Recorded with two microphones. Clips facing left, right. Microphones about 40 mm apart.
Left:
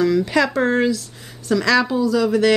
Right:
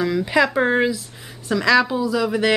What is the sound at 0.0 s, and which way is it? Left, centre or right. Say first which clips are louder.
Speech: left 1 dB; centre.